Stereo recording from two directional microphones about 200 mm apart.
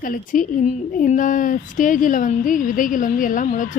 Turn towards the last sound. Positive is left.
turn(degrees=40)  # may be behind; listen again after turning